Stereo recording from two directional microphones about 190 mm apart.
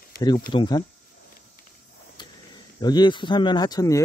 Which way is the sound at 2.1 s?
20° left (ahead or behind).